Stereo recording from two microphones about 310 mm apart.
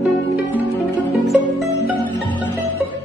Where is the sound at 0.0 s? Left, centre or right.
Centre.